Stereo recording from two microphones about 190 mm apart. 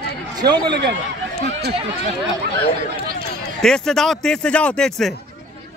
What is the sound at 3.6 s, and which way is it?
Speech, 5° left (ahead or behind).